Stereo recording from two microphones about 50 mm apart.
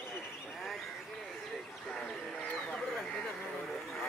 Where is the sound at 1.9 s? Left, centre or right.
Centre.